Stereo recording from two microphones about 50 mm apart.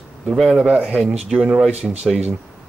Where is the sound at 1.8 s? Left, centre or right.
Right.